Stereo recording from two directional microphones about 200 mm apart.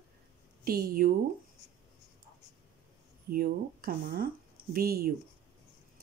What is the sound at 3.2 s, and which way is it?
Speech, 50° right (ahead or behind).